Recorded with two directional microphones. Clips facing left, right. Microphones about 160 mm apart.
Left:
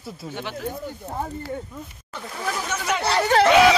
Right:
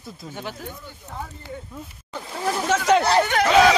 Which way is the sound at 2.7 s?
90° right.